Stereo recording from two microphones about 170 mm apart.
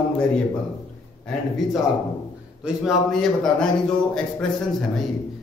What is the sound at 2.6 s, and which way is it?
A man's voice, centre (ahead or behind).